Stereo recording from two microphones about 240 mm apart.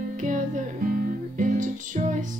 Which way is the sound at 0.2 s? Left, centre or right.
Right.